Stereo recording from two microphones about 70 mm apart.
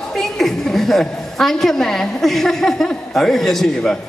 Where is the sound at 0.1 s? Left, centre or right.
Centre.